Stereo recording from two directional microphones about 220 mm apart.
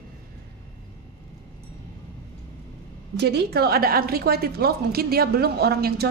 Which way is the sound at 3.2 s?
50° right (ahead or behind).